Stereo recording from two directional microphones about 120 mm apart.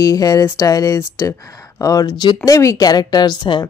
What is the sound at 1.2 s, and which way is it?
Speech, 25° left (ahead or behind).